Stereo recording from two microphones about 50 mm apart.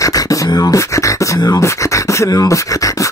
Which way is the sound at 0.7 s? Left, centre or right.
Left.